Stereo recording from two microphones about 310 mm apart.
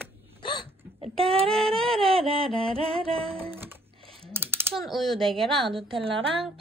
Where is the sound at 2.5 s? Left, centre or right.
Centre.